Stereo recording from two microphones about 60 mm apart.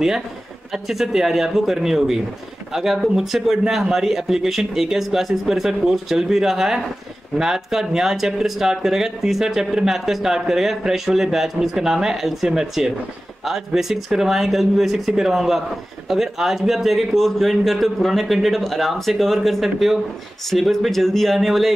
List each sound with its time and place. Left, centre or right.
0.8 s speech: centre